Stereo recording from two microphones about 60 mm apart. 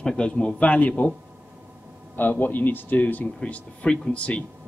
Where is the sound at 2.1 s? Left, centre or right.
Left.